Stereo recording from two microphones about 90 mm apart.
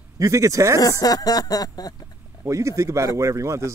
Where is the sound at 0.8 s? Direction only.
45° left (ahead or behind).